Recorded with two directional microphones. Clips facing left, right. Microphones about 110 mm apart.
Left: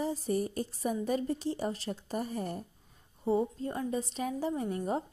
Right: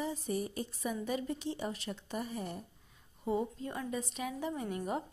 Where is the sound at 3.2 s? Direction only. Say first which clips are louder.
Left 5 dB; 30° left (ahead or behind).